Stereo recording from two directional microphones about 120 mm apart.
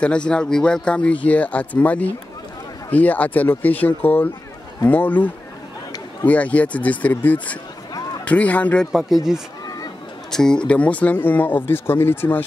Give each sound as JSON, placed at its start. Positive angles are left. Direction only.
{"t": 0.0, "sound": "speech", "side_deg": 10}
{"t": 8.9, "sound": "speech", "side_deg": -5}